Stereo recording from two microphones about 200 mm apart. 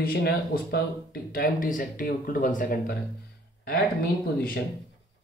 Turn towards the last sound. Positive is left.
turn(degrees=50)  # may be behind; listen again after turning